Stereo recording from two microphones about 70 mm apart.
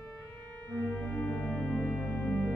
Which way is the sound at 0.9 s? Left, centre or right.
Centre.